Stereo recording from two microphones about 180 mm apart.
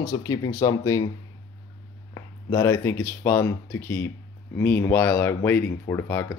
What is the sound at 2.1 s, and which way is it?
Speech, 15° left (ahead or behind).